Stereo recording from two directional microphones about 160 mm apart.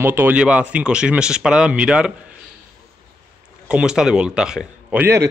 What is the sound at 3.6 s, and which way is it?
A man's voice, 5° right (ahead or behind).